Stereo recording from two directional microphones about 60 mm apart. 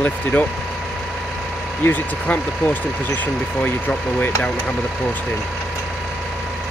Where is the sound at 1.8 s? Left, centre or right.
Left.